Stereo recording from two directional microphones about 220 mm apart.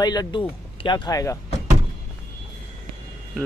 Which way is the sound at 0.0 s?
20° left (ahead or behind).